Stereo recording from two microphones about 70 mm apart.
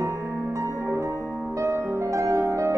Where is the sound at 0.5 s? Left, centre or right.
Right.